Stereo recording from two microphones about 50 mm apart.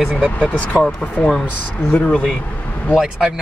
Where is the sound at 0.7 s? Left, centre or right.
Right.